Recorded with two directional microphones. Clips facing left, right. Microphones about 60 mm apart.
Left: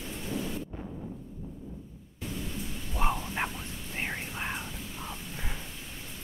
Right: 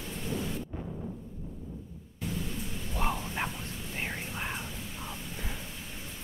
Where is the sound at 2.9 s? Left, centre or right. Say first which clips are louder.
Left 2 dB; centre.